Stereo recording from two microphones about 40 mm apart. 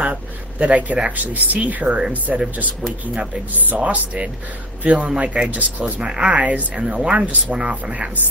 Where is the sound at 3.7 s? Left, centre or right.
Right.